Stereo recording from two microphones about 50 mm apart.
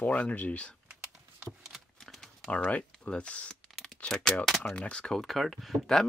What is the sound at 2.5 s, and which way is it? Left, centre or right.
Speech, left.